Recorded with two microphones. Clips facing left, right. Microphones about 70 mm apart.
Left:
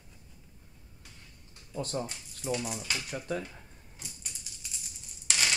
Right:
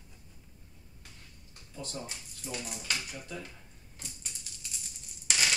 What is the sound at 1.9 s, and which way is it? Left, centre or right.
Speech, left.